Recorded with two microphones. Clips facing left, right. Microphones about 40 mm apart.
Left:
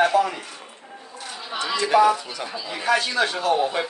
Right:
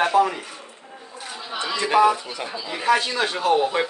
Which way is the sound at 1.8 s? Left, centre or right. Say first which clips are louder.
Even; centre.